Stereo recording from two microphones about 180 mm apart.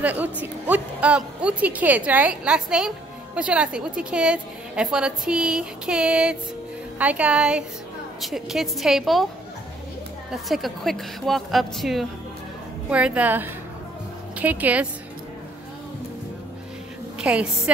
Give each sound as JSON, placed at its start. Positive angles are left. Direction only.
{"t": 0.0, "sound": "a woman's voice", "side_deg": -10}
{"t": 10.3, "sound": "a woman's voice", "side_deg": 0}
{"t": 17.2, "sound": "a woman's voice", "side_deg": -5}